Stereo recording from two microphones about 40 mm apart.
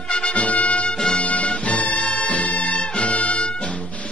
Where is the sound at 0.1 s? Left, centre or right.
Left.